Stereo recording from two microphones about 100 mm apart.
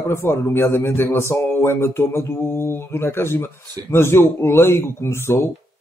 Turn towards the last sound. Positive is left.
turn(degrees=25)  # may be behind; listen again after turning